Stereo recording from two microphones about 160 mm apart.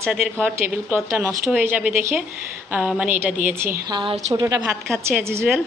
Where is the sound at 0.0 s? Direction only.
Centre (ahead or behind).